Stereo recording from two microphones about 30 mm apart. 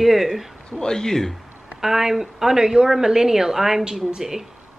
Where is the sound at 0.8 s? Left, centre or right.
Left.